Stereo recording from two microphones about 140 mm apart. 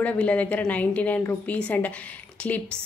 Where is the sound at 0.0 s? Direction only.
10° left (ahead or behind).